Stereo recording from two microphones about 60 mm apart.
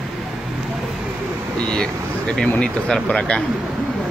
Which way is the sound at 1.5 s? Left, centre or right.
Centre.